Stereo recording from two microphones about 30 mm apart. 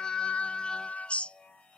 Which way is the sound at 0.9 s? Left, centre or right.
Left.